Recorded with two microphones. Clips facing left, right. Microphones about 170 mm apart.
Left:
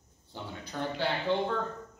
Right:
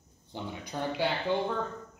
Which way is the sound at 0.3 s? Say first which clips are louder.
Right 3 dB; 15° right (ahead or behind).